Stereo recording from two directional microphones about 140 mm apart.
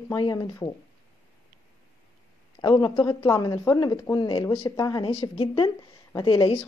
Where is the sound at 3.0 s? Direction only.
25° left (ahead or behind).